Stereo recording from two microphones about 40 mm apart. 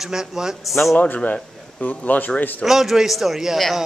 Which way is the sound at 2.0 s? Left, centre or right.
Left.